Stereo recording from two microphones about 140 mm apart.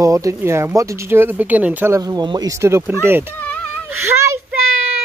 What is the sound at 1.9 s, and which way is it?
Speech, 25° right (ahead or behind).